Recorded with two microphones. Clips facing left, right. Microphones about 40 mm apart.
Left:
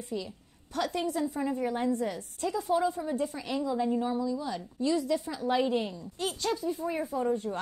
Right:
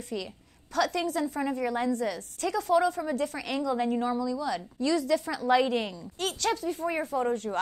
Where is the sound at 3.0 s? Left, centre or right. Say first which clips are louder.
Right 2 dB; right.